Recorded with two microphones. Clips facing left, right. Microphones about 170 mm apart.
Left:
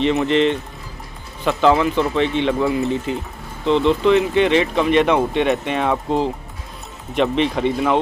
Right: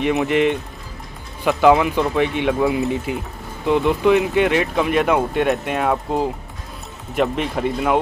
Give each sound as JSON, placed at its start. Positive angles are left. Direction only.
{"t": 0.0, "sound": "speech", "side_deg": -10}